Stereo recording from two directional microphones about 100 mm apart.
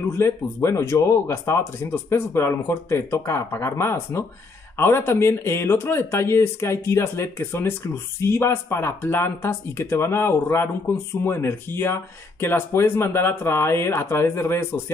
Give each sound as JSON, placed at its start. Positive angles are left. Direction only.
{"t": 0.1, "sound": "speech", "side_deg": 25}